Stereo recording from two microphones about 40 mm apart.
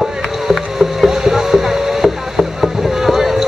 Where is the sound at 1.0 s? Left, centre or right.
Centre.